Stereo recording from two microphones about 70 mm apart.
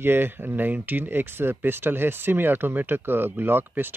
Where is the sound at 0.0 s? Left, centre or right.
Right.